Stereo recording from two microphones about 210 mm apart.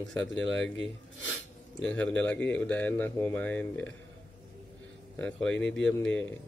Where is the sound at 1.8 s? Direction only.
5° left (ahead or behind).